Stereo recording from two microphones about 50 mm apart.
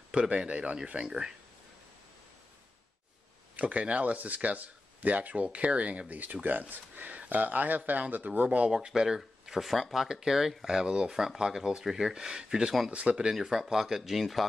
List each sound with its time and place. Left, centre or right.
0.1 s speech: centre
3.5 s speech: right
8.6 s speech: centre